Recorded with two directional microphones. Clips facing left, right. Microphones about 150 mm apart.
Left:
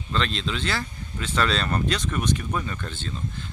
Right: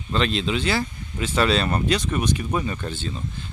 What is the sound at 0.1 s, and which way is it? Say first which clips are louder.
Speech: right 4 dB; 15° right (ahead or behind).